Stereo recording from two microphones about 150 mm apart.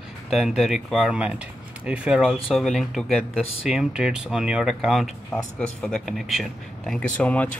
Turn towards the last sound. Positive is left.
turn(degrees=10)  # may be behind; listen again after turning